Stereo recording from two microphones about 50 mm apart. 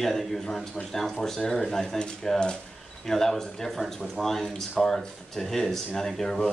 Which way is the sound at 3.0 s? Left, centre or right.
Centre.